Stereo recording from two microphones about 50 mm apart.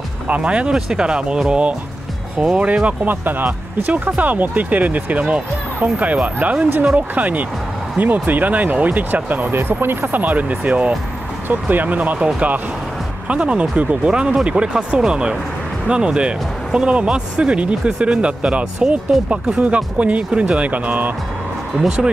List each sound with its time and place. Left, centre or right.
0.4 s speech: centre
3.1 s speech: right
13.3 s speech: right
21.7 s speech: centre